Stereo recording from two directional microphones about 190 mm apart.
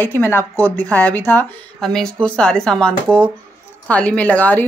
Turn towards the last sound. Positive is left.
turn(degrees=10)  # may be behind; listen again after turning